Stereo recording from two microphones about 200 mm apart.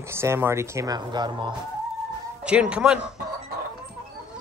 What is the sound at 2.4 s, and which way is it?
Speech, 5° right (ahead or behind).